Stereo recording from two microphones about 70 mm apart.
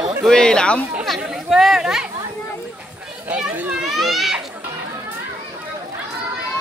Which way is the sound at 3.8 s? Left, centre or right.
Centre.